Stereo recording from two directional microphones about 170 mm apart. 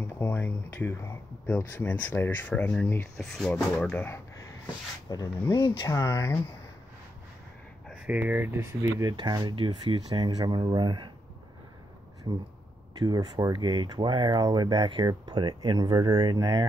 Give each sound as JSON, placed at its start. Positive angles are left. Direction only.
{"t": 0.0, "sound": "speech", "side_deg": 15}
{"t": 5.1, "sound": "speech", "side_deg": 20}
{"t": 7.9, "sound": "speech", "side_deg": -10}
{"t": 12.3, "sound": "speech", "side_deg": -15}